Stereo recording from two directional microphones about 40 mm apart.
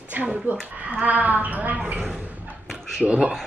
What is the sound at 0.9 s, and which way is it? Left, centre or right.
A woman's voice, right.